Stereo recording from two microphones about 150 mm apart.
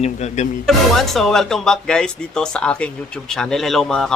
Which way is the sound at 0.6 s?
Centre (ahead or behind).